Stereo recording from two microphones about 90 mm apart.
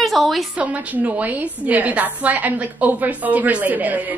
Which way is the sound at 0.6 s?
15° right (ahead or behind).